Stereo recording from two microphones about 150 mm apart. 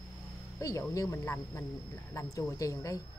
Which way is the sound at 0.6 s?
20° left (ahead or behind).